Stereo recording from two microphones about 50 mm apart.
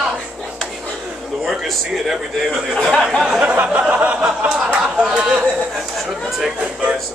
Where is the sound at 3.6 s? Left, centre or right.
Right.